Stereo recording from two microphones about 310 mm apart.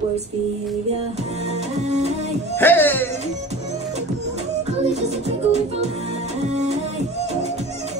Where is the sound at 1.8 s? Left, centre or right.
Right.